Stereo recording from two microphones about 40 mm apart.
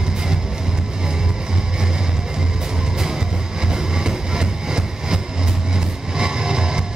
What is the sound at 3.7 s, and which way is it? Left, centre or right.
Music, centre.